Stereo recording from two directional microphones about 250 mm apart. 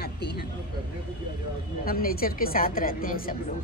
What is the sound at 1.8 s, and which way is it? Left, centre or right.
A woman's voice, left.